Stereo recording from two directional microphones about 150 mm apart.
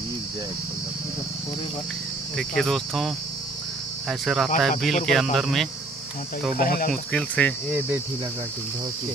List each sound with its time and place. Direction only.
2.3 s cricket: centre (ahead or behind)
6.5 s speech: 75° left (ahead or behind)
6.9 s speech: 5° left (ahead or behind)